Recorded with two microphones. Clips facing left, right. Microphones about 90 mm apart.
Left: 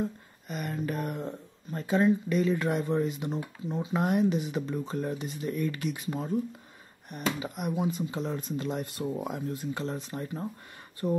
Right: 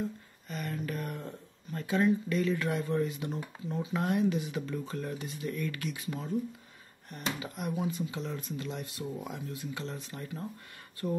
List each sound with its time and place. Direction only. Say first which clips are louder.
0.5 s speech: left 3 dB; 20° left (ahead or behind); by 6.3 s 35° left (ahead or behind)
7.1 s speech: left 5 dB; 15° left (ahead or behind)
7.9 s speech: left 4 dB; 35° left (ahead or behind)
11.0 s speech: left 4 dB; 20° left (ahead or behind)